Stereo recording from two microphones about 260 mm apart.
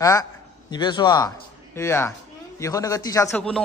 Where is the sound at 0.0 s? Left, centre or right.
Centre.